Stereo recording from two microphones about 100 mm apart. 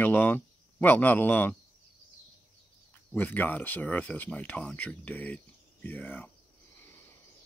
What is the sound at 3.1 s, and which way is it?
Speech, 20° left (ahead or behind).